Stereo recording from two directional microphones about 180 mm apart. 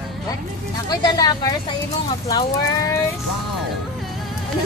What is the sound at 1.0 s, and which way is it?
Speech, 20° left (ahead or behind).